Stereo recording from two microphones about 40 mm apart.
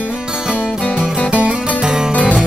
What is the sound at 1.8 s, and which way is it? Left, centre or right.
Music, centre.